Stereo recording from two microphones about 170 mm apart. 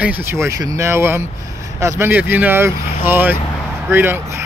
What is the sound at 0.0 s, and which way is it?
Speech, 10° right (ahead or behind).